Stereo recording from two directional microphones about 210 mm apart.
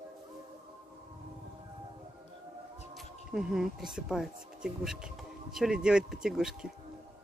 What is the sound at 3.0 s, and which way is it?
Speech, centre (ahead or behind).